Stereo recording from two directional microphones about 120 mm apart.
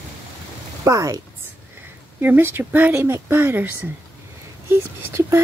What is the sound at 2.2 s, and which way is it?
Speech, 15° right (ahead or behind).